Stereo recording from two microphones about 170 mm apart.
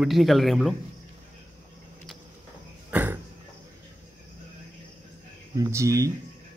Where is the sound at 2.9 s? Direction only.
10° right (ahead or behind).